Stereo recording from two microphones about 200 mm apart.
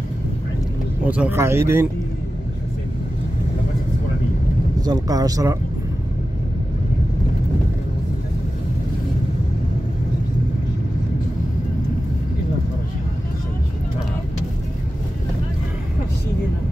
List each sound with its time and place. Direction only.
1.0 s speech: 5° right (ahead or behind)
4.7 s speech: 20° right (ahead or behind)